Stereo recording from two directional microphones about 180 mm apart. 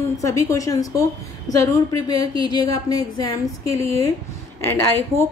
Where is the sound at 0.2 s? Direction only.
15° left (ahead or behind).